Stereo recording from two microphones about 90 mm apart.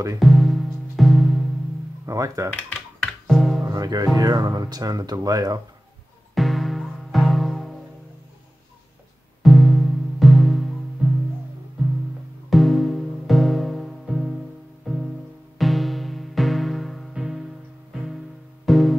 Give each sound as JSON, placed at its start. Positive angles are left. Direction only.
{"t": 0.2, "sound": "music", "side_deg": 0}
{"t": 2.0, "sound": "speech", "side_deg": -35}
{"t": 3.0, "sound": "music", "side_deg": 0}
{"t": 3.6, "sound": "speech", "side_deg": -45}
{"t": 6.3, "sound": "music", "side_deg": 0}
{"t": 9.4, "sound": "music", "side_deg": 0}
{"t": 12.4, "sound": "music", "side_deg": 0}